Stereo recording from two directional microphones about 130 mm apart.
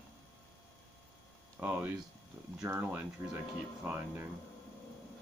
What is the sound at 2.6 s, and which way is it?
Speech, 15° right (ahead or behind).